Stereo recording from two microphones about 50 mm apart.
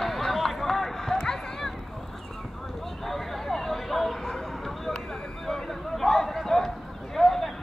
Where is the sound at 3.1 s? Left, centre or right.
Centre.